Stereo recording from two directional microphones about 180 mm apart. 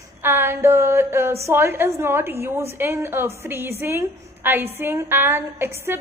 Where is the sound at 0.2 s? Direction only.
10° right (ahead or behind).